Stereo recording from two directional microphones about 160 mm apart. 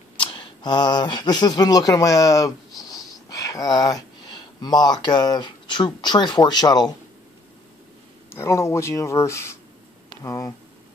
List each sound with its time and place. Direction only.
0.2 s speech: 30° left (ahead or behind)
8.3 s speech: 15° left (ahead or behind)